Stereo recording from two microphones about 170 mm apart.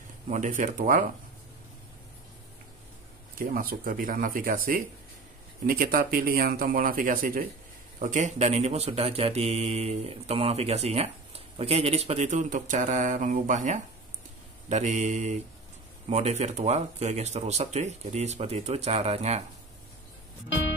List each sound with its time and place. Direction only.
0.3 s speech: 45° right (ahead or behind)
3.3 s speech: 55° right (ahead or behind); by 19.4 s 40° right (ahead or behind)